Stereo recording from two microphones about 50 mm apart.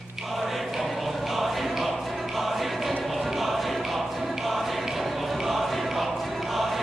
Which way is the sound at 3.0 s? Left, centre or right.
Centre.